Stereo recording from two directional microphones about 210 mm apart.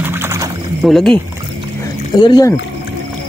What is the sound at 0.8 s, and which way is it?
Speech, centre (ahead or behind).